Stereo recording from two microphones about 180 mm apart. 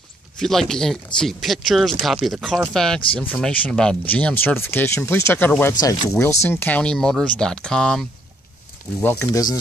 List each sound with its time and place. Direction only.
0.4 s speech: centre (ahead or behind)
9.0 s speech: 15° left (ahead or behind)